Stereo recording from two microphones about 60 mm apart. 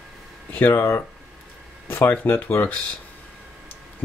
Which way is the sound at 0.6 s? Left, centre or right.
Left.